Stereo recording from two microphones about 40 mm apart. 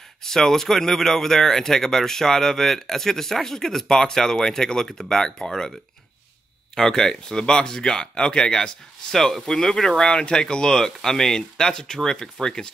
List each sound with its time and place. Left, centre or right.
0.2 s speech: centre
6.7 s speech: centre